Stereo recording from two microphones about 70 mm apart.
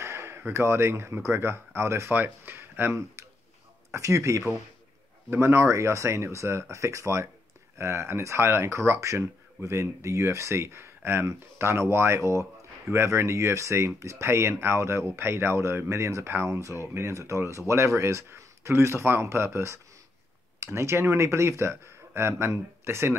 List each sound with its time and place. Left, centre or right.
0.0 s speech: right